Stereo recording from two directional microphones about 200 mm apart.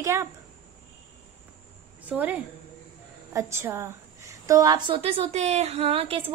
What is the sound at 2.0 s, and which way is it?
A woman's voice, 10° right (ahead or behind).